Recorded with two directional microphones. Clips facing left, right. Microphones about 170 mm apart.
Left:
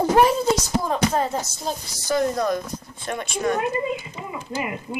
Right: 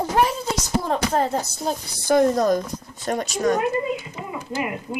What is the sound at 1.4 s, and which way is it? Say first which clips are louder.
A woman's voice: right 3 dB; 55° right (ahead or behind).